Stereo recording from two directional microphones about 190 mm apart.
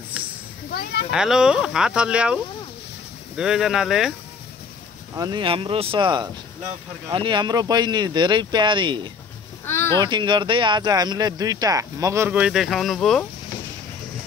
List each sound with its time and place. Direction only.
0.7 s speech: 55° left (ahead or behind)
1.1 s speech: 5° right (ahead or behind)
5.1 s speech: 20° right (ahead or behind)
9.7 s a sound: 10° left (ahead or behind)
9.9 s speech: 25° right (ahead or behind); by 13.3 s centre (ahead or behind)